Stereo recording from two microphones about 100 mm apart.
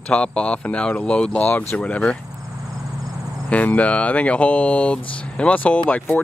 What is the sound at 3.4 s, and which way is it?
Speech, 15° left (ahead or behind).